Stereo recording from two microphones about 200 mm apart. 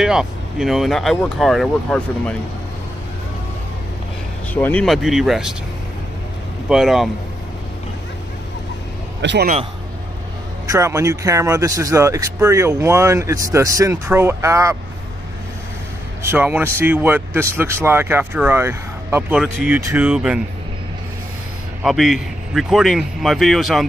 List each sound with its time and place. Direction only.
0.0 s speech: 5° right (ahead or behind)
4.6 s speech: 10° left (ahead or behind)
6.7 s speech: centre (ahead or behind)
9.2 s a man's voice: 60° right (ahead or behind)
10.7 s speech: 15° right (ahead or behind)
16.2 s speech: 10° right (ahead or behind)
21.8 s speech: centre (ahead or behind)